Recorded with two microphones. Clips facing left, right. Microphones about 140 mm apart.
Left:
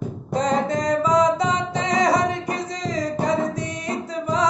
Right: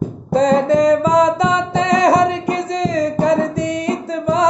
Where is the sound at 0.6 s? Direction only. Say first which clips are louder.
Right 8 dB; 90° right.